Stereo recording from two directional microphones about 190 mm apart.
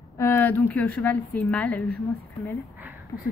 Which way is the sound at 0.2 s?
10° left (ahead or behind).